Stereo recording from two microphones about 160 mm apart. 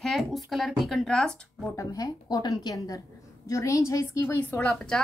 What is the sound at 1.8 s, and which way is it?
A woman's voice, 25° left (ahead or behind).